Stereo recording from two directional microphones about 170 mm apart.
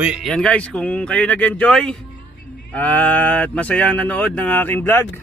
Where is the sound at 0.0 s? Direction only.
5° right (ahead or behind); by 5.2 s 15° left (ahead or behind).